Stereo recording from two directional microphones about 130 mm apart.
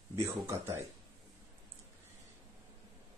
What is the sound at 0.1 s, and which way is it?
Speech, 20° right (ahead or behind).